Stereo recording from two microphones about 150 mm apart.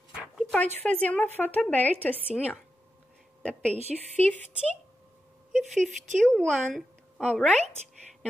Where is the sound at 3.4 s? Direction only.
10° left (ahead or behind).